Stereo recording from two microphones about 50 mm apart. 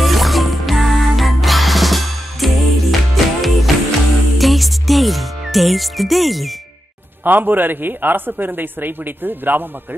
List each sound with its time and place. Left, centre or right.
0.0 s music: centre
7.2 s speech: right